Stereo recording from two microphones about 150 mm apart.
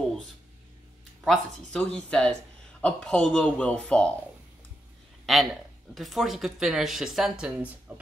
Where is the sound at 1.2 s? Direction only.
5° left (ahead or behind).